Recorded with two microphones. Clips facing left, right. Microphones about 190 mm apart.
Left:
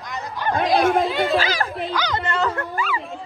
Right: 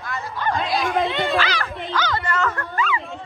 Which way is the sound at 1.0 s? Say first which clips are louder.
Left 2 dB; 5° left (ahead or behind).